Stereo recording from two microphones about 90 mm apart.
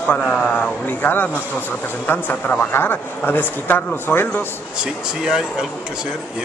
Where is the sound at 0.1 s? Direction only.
15° left (ahead or behind).